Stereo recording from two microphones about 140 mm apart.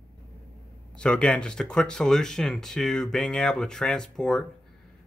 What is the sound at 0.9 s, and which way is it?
Speech, 5° left (ahead or behind).